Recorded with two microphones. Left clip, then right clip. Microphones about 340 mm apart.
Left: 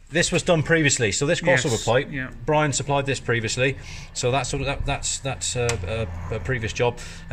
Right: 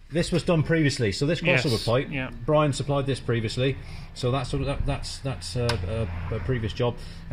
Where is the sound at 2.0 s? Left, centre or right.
Centre.